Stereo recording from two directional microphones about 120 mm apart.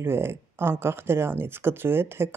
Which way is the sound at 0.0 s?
20° right (ahead or behind).